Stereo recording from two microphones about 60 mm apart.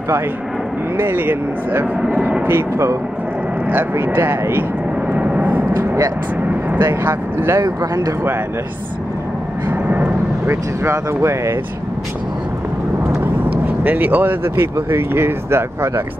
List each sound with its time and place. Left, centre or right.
0.9 s speech: right
2.0 s speech: centre
2.4 s speech: right
5.1 s vehicle: right
6.8 s speech: right
7.8 s speech: right
9.7 s vehicle: right
10.5 s speech: right
13.2 s speech: right